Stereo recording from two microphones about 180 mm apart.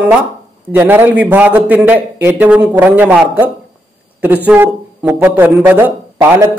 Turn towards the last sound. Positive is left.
turn(degrees=-15)  # may be behind; listen again after turning